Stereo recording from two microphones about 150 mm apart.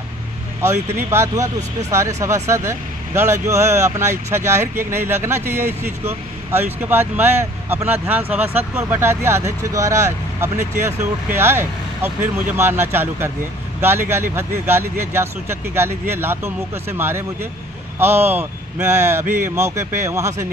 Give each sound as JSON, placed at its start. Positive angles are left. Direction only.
{"t": 0.6, "sound": "speech", "side_deg": -15}